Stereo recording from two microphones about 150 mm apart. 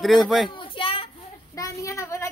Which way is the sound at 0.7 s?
40° left (ahead or behind).